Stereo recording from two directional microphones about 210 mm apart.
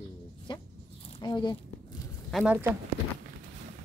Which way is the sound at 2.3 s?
Centre (ahead or behind).